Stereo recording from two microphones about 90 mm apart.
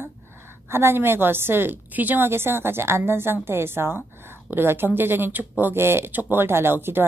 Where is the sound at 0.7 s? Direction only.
25° right (ahead or behind).